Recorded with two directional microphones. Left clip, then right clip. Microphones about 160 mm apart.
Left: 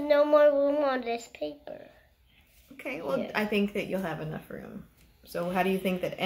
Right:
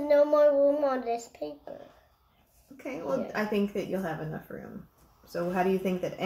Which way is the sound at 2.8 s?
25° right (ahead or behind).